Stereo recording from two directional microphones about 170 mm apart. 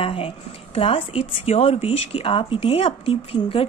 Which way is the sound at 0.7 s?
35° left (ahead or behind).